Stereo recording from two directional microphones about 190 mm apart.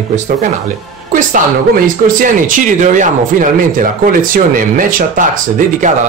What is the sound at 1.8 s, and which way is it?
Speech, 45° right (ahead or behind).